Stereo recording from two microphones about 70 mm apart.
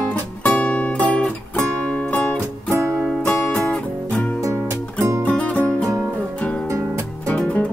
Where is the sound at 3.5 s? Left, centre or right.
Centre.